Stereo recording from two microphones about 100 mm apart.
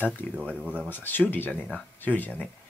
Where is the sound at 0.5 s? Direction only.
15° right (ahead or behind).